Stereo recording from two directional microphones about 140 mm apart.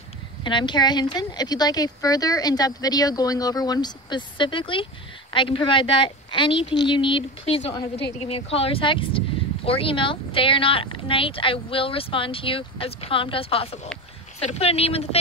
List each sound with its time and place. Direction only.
0.4 s a woman's voice: 35° left (ahead or behind)